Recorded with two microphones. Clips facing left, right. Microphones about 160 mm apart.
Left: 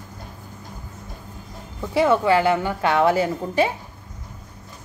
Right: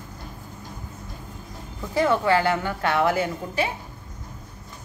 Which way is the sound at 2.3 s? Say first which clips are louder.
Left 3 dB; 20° left (ahead or behind).